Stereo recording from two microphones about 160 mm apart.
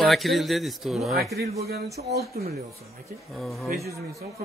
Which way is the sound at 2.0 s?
70° right (ahead or behind).